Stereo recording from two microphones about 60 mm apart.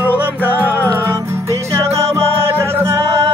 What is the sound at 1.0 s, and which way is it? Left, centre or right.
Music, right.